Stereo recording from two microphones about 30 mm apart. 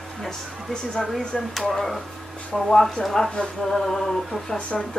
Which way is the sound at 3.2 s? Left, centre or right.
Left.